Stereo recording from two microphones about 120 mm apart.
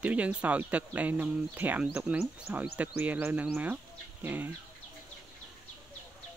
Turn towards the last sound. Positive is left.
turn(degrees=-15)  # may be behind; listen again after turning